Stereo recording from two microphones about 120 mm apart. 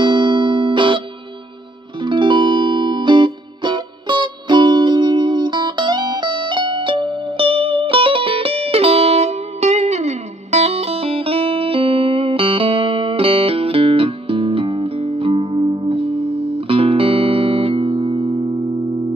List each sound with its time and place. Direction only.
0.0 s music: 40° right (ahead or behind)